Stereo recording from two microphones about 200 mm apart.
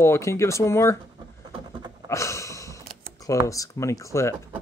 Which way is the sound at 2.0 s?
15° left (ahead or behind).